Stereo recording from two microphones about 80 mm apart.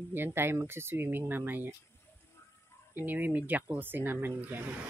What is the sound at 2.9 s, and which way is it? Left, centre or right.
Speech, right.